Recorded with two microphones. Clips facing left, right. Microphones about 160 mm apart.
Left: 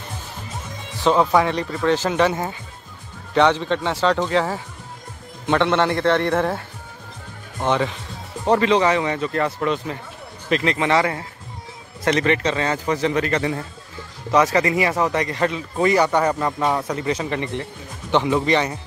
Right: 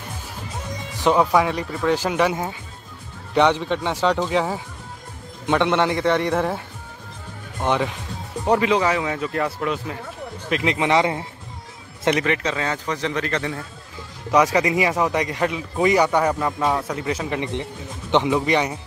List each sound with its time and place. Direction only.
1.0 s speech: 10° right (ahead or behind)
7.6 s speech: 10° right (ahead or behind)
12.3 s speech: centre (ahead or behind)
14.3 s speech: 10° right (ahead or behind)